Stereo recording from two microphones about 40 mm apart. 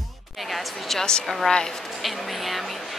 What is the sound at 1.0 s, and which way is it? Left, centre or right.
Speech, centre.